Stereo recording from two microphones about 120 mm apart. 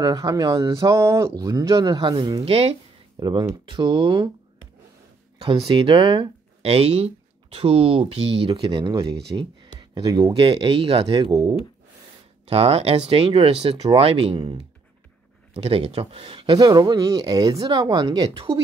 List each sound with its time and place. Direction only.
0.0 s speech: 30° right (ahead or behind)
2.4 s speech: 55° right (ahead or behind)
3.2 s speech: 40° right (ahead or behind)
5.8 s speech: 40° right (ahead or behind)
12.4 s speech: 55° right (ahead or behind)
15.5 s speech: 55° right (ahead or behind)
16.5 s speech: 35° right (ahead or behind)